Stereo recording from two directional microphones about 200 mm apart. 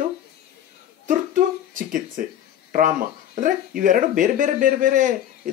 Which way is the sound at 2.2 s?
45° right (ahead or behind).